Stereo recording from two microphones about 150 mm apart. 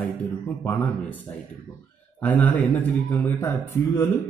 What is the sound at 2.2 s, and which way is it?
A man's voice, 10° left (ahead or behind).